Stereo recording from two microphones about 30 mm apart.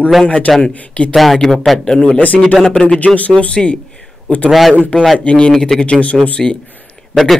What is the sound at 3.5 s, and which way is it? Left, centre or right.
Speech, left.